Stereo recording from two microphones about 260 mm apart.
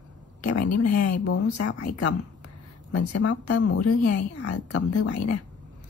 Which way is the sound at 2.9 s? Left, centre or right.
Left.